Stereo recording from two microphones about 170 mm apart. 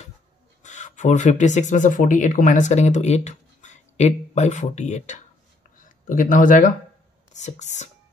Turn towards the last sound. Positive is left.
turn(degrees=45)  # may be behind; listen again after turning